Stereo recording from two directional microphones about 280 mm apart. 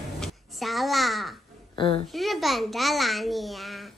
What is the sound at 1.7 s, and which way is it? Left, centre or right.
Speech, centre.